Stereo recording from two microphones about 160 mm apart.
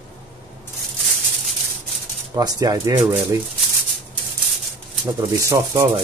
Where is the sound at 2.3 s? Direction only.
20° right (ahead or behind).